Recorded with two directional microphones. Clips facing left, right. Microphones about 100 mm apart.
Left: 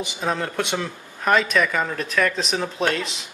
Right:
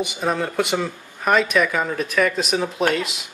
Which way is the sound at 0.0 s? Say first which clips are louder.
Right 3 dB; 5° right (ahead or behind).